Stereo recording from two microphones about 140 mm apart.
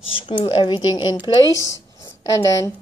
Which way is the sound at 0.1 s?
35° left (ahead or behind).